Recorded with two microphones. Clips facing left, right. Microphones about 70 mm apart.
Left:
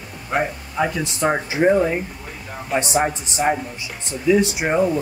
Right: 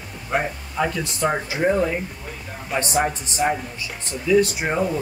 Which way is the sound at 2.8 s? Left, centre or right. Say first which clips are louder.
Left 2 dB; centre.